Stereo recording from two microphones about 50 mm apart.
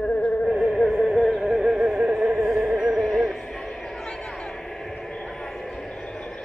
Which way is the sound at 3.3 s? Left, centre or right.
Centre.